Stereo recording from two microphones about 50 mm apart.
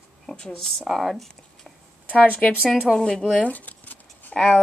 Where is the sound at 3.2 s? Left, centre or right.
Left.